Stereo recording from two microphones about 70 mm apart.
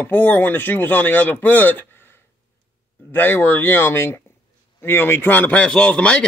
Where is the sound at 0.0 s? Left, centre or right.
Left.